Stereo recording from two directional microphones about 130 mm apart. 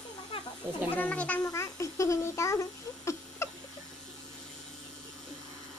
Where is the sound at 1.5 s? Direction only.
25° left (ahead or behind).